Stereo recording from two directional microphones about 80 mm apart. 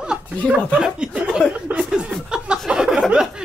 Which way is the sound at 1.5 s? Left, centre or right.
Centre.